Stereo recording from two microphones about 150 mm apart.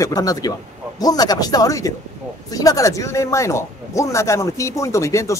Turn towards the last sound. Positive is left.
turn(degrees=20)  # may be behind; listen again after turning